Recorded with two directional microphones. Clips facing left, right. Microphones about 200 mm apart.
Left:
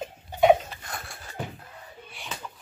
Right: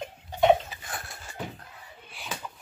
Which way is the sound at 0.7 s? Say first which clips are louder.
Even; 5° right (ahead or behind).